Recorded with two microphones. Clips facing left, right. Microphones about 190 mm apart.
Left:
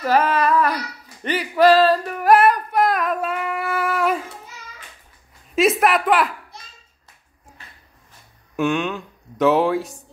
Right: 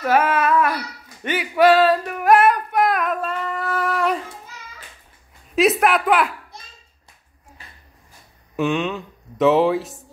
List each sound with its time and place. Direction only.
0.0 s humming: 5° right (ahead or behind)
1.2 s singing: 5° right (ahead or behind)
5.5 s a woman's voice: centre (ahead or behind)
8.5 s speech: centre (ahead or behind)